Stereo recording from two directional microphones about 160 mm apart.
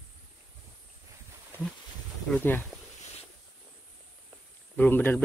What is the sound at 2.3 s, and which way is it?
Speech, 10° left (ahead or behind).